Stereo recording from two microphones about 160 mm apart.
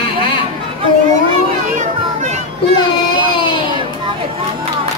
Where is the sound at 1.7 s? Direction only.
50° right (ahead or behind).